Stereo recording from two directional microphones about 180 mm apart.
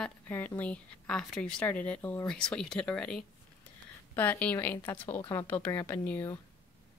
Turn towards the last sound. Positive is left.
turn(degrees=10)  # may be behind; listen again after turning